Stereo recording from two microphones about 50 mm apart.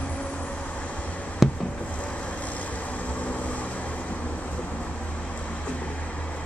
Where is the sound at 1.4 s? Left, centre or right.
Centre.